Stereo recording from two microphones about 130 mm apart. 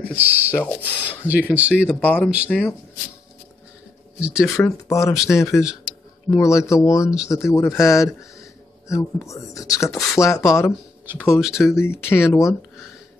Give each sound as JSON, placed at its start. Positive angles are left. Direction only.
{"t": 0.2, "sound": "speech", "side_deg": -15}
{"t": 0.7, "sound": "speech", "side_deg": 10}
{"t": 1.2, "sound": "speech", "side_deg": -10}
{"t": 1.9, "sound": "speech", "side_deg": 15}
{"t": 4.5, "sound": "speech", "side_deg": 20}
{"t": 11.3, "sound": "speech", "side_deg": -5}
{"t": 11.7, "sound": "speech", "side_deg": 20}